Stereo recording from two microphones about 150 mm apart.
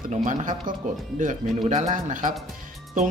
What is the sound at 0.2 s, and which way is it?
Speech, 55° right (ahead or behind).